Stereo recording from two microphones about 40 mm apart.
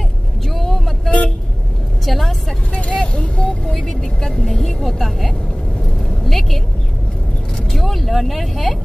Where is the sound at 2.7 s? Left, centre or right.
Left.